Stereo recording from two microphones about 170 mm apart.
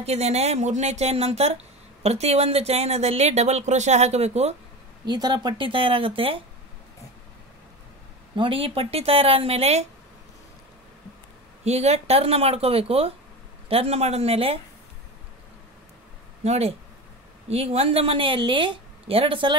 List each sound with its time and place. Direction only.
0.0 s speech: 40° right (ahead or behind)
5.0 s speech: 25° right (ahead or behind)
8.4 s speech: 30° right (ahead or behind)
11.6 s speech: 40° right (ahead or behind)
16.4 s speech: 40° right (ahead or behind)